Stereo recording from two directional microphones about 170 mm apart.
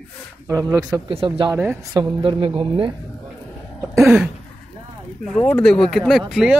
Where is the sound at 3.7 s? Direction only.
10° right (ahead or behind).